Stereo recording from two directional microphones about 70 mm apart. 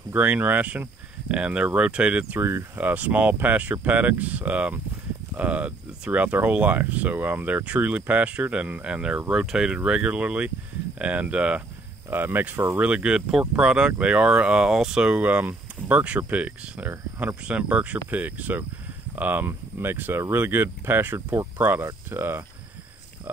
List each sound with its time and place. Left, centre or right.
0.1 s speech: right
2.3 s speech: right
2.8 s speech: right
12.1 s speech: right